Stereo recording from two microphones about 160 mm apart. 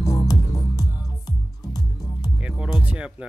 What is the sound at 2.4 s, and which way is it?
Music, 5° right (ahead or behind).